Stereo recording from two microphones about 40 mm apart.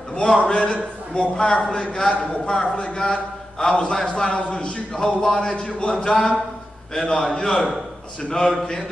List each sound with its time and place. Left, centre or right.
0.1 s a man's voice: centre
4.4 s speech: left
4.9 s a man's voice: centre